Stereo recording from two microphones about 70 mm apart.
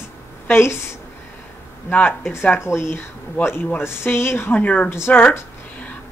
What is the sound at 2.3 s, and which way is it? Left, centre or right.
Speech, left.